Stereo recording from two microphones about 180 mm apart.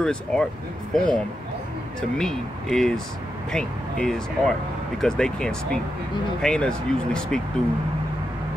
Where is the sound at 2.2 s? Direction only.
5° left (ahead or behind).